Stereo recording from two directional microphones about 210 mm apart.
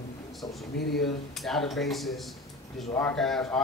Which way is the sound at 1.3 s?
Centre (ahead or behind).